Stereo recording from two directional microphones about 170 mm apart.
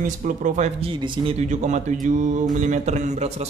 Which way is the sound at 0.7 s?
30° right (ahead or behind).